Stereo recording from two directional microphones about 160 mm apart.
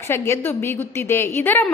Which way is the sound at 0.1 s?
15° left (ahead or behind).